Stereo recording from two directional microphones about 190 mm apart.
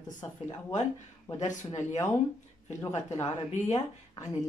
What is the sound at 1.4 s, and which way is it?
Speech, 40° left (ahead or behind).